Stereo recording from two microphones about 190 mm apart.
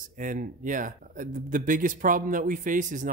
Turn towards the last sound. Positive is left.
turn(degrees=-45)  # may be behind; listen again after turning